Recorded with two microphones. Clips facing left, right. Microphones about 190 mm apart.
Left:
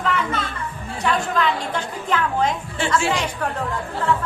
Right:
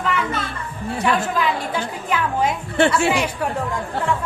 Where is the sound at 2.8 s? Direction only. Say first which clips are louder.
Right 10 dB; 65° right (ahead or behind).